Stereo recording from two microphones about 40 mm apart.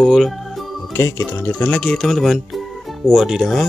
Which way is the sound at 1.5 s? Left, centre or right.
Left.